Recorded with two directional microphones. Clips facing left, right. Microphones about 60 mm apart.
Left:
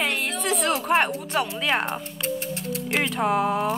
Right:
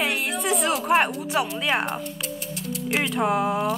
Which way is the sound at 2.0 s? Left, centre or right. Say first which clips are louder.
Left 3 dB; left.